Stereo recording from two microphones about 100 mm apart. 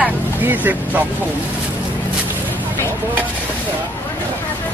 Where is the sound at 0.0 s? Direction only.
20° right (ahead or behind).